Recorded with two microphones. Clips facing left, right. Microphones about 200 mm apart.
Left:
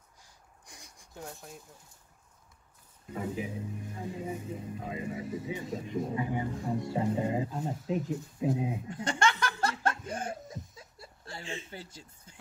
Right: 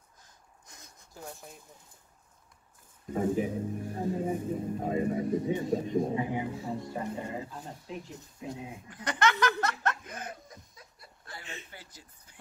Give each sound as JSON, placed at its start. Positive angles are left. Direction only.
{"t": 0.2, "sound": "a sound", "side_deg": 10}
{"t": 1.3, "sound": "speech", "side_deg": 0}
{"t": 3.1, "sound": "speech", "side_deg": -45}
{"t": 5.8, "sound": "speech", "side_deg": -30}
{"t": 6.8, "sound": "speech", "side_deg": 20}
{"t": 7.7, "sound": "speech", "side_deg": 0}
{"t": 8.4, "sound": "chuckle", "side_deg": 25}